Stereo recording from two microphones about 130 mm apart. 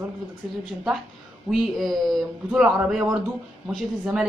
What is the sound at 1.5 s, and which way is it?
Speech, centre (ahead or behind).